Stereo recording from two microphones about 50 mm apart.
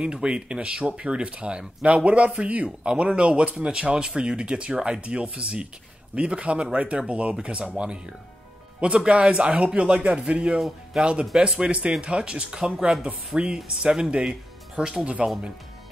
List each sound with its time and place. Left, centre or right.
0.0 s speech: right
10.6 s speech: centre
11.3 s speech: centre